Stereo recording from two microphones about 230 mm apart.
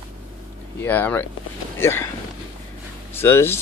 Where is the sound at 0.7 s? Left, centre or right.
Centre.